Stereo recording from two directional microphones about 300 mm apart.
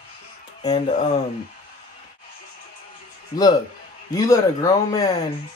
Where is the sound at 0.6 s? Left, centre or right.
Left.